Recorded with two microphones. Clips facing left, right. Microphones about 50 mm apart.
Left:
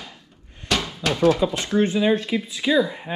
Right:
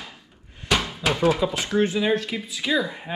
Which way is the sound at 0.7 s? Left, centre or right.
Centre.